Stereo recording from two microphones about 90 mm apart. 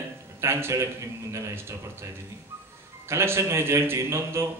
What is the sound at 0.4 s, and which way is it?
Speech, 30° right (ahead or behind).